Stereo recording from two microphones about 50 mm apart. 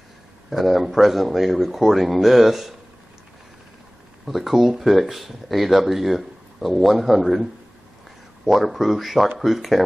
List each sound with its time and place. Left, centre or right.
0.5 s speech: centre
4.3 s speech: centre
8.5 s speech: centre